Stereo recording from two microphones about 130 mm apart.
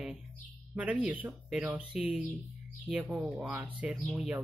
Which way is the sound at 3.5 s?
10° right (ahead or behind).